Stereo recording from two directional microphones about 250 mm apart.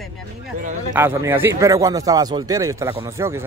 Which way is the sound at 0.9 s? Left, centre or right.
Centre.